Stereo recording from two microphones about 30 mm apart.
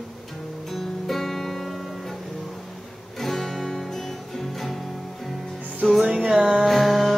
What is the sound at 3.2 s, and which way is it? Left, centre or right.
Guitar, centre.